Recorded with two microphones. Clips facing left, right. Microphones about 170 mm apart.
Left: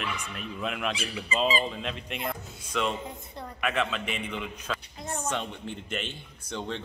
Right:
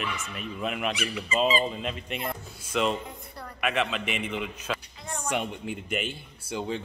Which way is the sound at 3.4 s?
20° left (ahead or behind).